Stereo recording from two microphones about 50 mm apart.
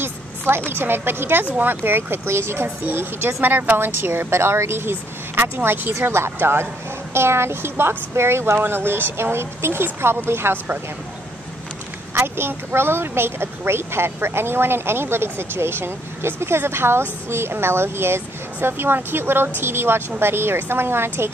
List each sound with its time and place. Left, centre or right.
0.7 s speech: right
2.8 s a child's voice: right
12.1 s speech: right